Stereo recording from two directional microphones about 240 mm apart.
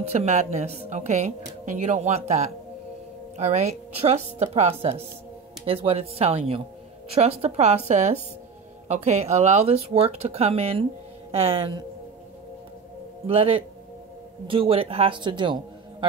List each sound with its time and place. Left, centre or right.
0.0 s a woman's voice: right
13.3 s a woman's voice: right